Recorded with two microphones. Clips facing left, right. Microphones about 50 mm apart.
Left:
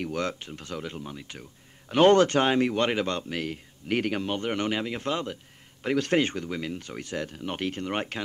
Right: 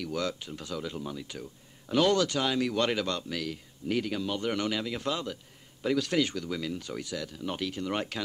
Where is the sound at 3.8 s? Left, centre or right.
Left.